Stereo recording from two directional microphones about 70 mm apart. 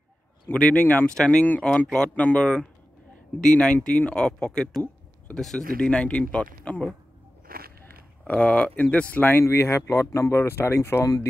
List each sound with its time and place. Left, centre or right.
0.5 s speech: left
8.3 s speech: centre
9.2 s speech: left